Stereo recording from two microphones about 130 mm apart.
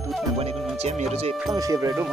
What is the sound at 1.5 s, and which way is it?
Speech, 25° right (ahead or behind).